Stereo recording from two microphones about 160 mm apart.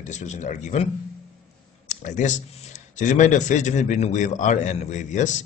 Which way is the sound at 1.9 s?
50° left (ahead or behind).